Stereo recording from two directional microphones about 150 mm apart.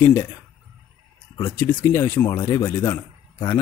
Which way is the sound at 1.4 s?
15° left (ahead or behind).